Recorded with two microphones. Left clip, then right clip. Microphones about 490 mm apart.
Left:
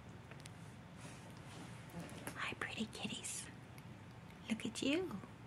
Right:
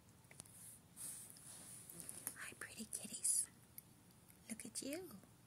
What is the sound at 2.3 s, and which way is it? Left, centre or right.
Whispering, right.